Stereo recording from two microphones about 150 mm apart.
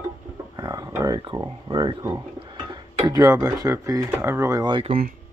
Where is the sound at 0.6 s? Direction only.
25° right (ahead or behind).